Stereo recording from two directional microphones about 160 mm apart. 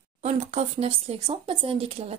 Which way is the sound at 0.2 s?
45° right (ahead or behind).